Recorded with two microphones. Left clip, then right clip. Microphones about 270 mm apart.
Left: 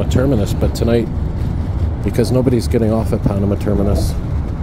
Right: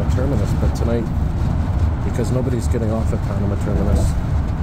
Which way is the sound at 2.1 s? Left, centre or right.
Left.